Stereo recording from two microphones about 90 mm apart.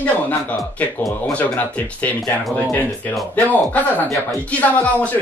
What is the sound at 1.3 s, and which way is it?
Speech, 15° left (ahead or behind).